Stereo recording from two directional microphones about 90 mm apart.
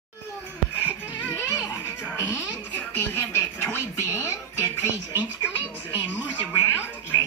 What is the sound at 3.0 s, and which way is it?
Speech, 25° left (ahead or behind).